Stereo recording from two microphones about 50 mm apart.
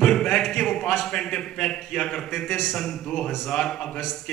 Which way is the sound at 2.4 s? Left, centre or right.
Centre.